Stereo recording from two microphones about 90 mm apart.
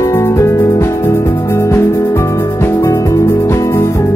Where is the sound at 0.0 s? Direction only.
30° left (ahead or behind).